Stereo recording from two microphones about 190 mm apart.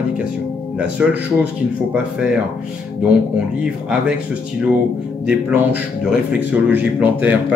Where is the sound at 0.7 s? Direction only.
5° right (ahead or behind).